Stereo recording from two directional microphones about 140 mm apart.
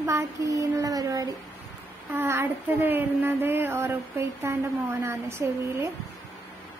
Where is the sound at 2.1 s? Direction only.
15° right (ahead or behind).